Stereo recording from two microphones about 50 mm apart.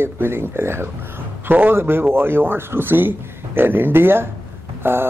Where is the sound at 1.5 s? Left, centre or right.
Right.